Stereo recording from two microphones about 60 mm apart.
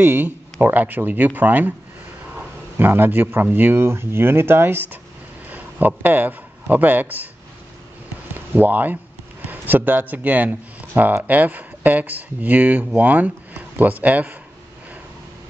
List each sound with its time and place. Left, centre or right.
0.0 s speech: right
2.8 s speech: right
3.7 s a man's voice: right
8.4 s speech: right